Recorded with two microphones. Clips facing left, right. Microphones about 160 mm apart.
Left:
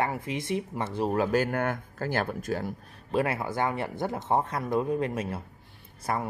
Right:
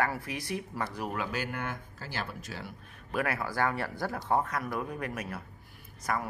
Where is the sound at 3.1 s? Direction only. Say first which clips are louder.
Left 4 dB; 25° left (ahead or behind).